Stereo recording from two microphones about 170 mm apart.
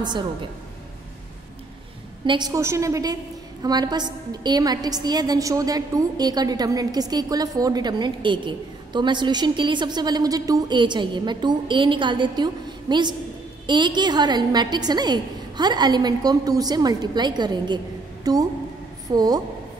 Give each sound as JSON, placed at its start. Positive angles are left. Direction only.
{"t": 0.0, "sound": "a woman's voice", "side_deg": -25}
{"t": 2.2, "sound": "a woman's voice", "side_deg": -25}